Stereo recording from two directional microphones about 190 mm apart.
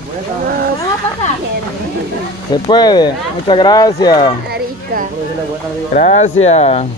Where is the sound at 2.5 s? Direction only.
20° left (ahead or behind).